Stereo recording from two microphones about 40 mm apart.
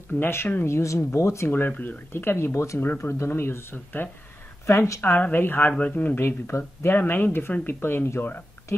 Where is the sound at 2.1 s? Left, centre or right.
Left.